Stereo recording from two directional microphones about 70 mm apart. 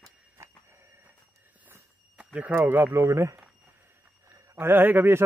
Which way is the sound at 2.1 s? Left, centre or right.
Centre.